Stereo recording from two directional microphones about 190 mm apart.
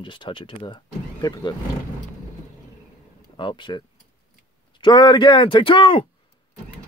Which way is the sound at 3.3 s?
25° left (ahead or behind).